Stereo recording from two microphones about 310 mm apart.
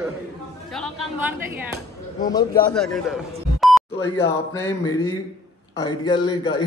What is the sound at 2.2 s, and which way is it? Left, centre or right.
Speech, centre.